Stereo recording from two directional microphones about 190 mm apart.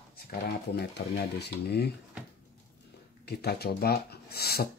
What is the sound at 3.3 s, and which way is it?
Speech, 55° left (ahead or behind).